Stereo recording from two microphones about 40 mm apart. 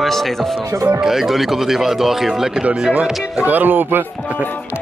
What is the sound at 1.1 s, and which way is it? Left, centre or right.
Speech, centre.